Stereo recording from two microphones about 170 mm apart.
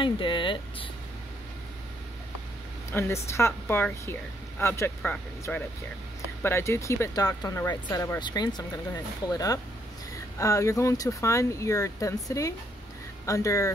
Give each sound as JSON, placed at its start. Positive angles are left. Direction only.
{"t": 0.0, "sound": "speech", "side_deg": 30}
{"t": 2.9, "sound": "a woman's voice", "side_deg": 15}